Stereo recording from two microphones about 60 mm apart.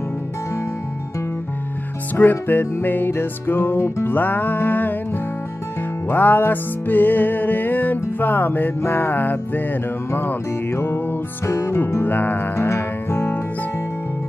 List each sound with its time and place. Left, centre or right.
2.1 s music: left
11.4 s music: left
11.9 s music: left
12.5 s music: left